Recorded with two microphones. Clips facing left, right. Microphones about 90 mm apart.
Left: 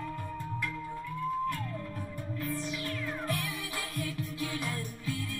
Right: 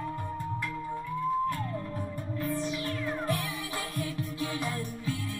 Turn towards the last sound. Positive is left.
turn(degrees=-5)  # may be behind; listen again after turning